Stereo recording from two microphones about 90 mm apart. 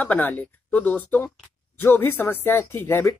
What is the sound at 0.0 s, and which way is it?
Speech, 20° left (ahead or behind).